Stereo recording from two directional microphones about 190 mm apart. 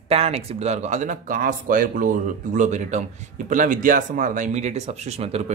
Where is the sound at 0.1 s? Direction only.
30° right (ahead or behind).